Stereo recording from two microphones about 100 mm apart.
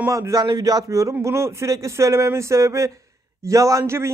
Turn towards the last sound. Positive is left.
turn(degrees=-25)  # may be behind; listen again after turning